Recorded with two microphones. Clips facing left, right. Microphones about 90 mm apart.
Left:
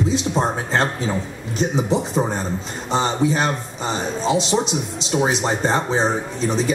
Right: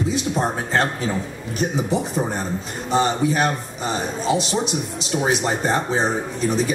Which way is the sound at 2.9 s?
30° left (ahead or behind).